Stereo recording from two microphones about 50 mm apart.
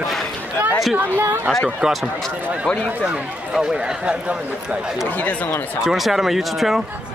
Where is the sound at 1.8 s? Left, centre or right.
Centre.